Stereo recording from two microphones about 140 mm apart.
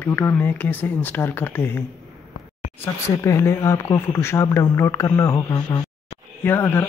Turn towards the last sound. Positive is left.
turn(degrees=15)  # may be behind; listen again after turning